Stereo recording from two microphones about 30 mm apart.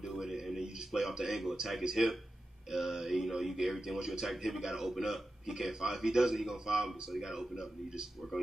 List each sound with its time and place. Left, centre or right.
0.2 s a man's voice: centre